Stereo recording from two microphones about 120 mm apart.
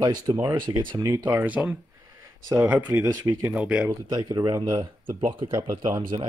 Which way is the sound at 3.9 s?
30° right (ahead or behind).